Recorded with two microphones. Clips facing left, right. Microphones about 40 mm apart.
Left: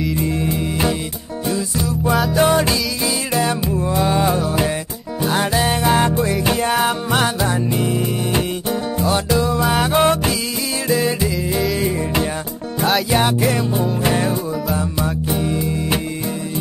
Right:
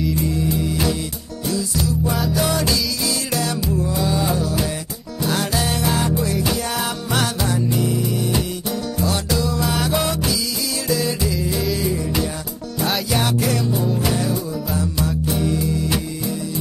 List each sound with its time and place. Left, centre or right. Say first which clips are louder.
0.1 s music: left 1 dB; left
13.1 s music: left 3 dB; left